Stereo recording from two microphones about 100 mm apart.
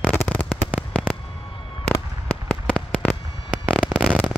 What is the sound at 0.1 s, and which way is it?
Fireworks, 20° left (ahead or behind).